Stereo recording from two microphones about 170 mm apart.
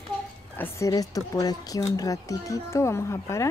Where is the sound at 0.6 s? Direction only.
15° left (ahead or behind).